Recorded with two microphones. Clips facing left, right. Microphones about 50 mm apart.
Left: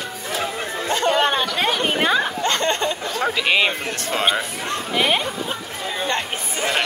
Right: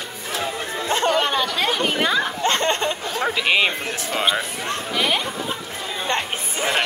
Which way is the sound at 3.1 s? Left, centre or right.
Centre.